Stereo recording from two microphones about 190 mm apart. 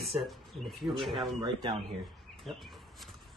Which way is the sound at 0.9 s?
Centre (ahead or behind).